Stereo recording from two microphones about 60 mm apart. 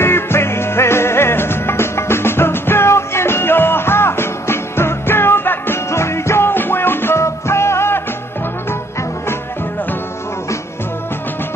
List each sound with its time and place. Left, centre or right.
0.0 s music: left
5.9 s music: left